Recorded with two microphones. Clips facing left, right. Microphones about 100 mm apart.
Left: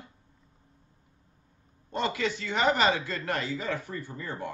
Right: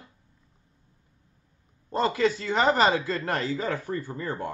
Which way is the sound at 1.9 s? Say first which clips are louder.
Right 6 dB; 35° right (ahead or behind).